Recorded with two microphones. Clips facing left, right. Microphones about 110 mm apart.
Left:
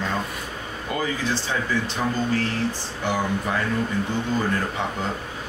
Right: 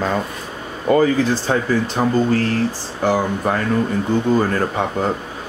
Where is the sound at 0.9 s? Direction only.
45° right (ahead or behind).